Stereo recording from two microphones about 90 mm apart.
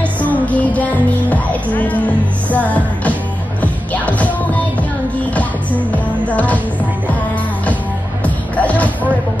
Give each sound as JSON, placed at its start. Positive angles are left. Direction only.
{"t": 0.0, "sound": "music", "side_deg": 15}
{"t": 5.3, "sound": "music", "side_deg": 15}
{"t": 8.2, "sound": "music", "side_deg": 15}